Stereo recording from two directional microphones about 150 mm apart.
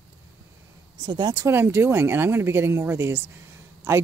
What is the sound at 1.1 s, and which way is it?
Speech, 30° right (ahead or behind).